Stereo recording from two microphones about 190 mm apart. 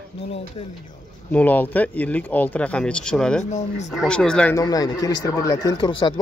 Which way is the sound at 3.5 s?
35° left (ahead or behind).